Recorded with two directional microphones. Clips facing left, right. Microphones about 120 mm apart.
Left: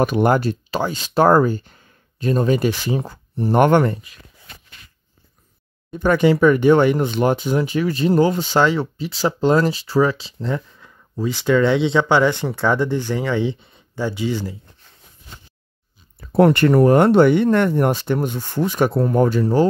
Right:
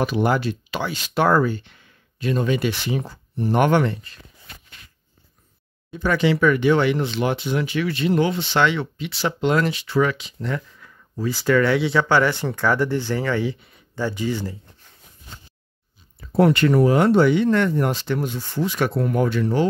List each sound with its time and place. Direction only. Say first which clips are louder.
0.0 s speech: left 4 dB; 50° left (ahead or behind)
5.9 s speech: left 4 dB; 50° left (ahead or behind); by 13.8 s 25° left (ahead or behind)
13.9 s speech: left 2 dB; 15° left (ahead or behind)
16.3 s speech: left 3 dB; 55° left (ahead or behind)
18.9 s speech: left 4 dB; 35° left (ahead or behind)